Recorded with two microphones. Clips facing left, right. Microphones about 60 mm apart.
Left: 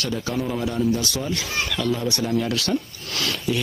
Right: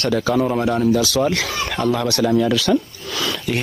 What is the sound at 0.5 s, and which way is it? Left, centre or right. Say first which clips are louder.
Speech: right 6 dB; right.